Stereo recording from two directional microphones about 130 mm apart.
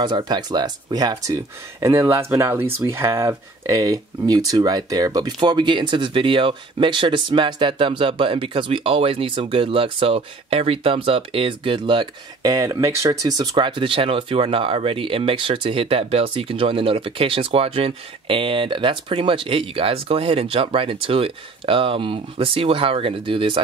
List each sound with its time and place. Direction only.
0.0 s speech: 35° right (ahead or behind)